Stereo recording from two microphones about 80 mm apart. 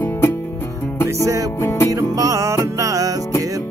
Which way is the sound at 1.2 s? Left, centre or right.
Right.